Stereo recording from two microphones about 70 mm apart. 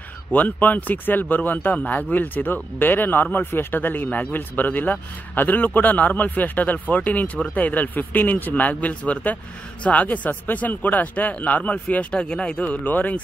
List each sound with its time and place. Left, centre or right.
0.3 s a man's voice: left